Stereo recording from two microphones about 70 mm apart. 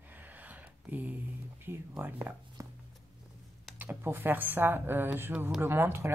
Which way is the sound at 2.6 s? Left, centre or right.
Right.